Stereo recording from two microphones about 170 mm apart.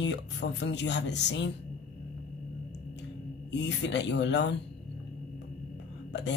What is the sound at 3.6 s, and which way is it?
Speech, 90° left.